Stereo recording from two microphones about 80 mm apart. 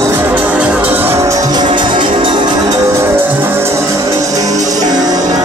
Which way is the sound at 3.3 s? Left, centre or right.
Right.